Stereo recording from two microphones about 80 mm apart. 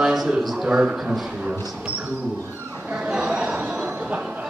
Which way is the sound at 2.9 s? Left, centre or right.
Centre.